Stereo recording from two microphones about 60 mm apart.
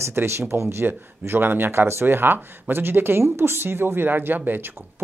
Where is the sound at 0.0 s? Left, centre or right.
Right.